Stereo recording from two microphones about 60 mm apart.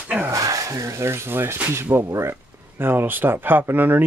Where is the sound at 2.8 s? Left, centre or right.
Right.